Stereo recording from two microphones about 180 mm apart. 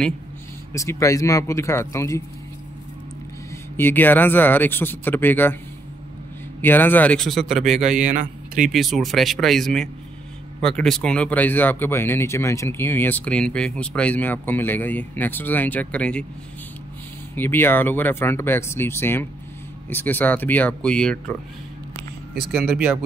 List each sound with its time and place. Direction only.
0.7 s speech: 15° left (ahead or behind)
3.7 s speech: 10° left (ahead or behind)
6.6 s speech: 10° left (ahead or behind)
7.8 s a man's voice: 45° right (ahead or behind)
8.7 s speech: centre (ahead or behind)
17.4 s speech: 10° left (ahead or behind)
22.3 s speech: 60° right (ahead or behind)